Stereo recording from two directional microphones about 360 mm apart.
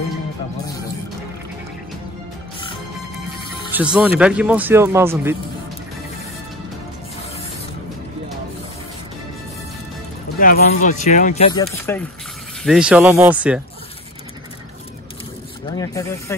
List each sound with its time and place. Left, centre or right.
3.7 s speech: centre
10.4 s speech: left; by 13.6 s centre
15.7 s speech: centre